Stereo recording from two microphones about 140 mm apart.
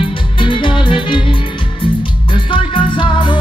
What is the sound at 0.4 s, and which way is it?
Music, 35° left (ahead or behind).